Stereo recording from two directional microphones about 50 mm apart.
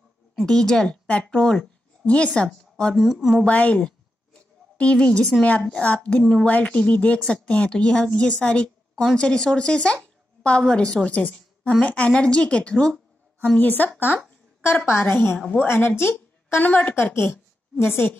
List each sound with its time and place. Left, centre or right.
0.5 s speech: centre
1.0 s speech: left
1.4 s speech: centre
2.0 s a woman's voice: left
3.0 s a woman's voice: centre
3.4 s a woman's voice: left
3.8 s a sound: left
5.6 s a woman's voice: left
13.6 s a woman's voice: left
15.6 s speech: left
16.0 s a sound: left
16.5 s a woman's voice: left
17.1 s a woman's voice: left